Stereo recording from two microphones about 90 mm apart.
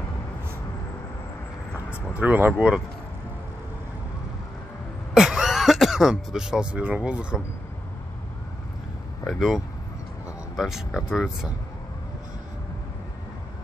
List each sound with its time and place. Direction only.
2.1 s speech: 20° right (ahead or behind)
5.1 s speech: 5° right (ahead or behind)
9.2 s speech: centre (ahead or behind)